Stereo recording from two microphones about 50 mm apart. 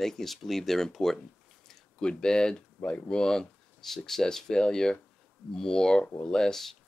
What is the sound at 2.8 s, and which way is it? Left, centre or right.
Speech, left.